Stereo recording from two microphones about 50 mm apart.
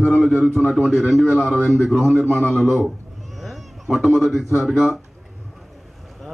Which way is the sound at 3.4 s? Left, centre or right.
Centre.